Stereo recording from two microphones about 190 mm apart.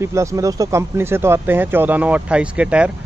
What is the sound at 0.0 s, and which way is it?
Speech, 15° right (ahead or behind).